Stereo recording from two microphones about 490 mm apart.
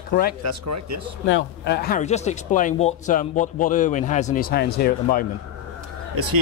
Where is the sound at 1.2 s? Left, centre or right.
Left.